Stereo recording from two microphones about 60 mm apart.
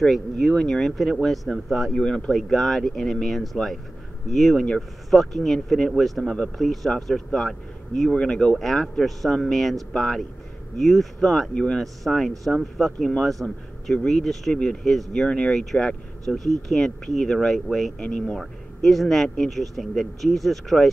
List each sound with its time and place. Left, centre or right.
0.0 s speech: centre
2.0 s speech: centre
11.5 s speech: centre
11.8 s speech: centre
17.9 s speech: centre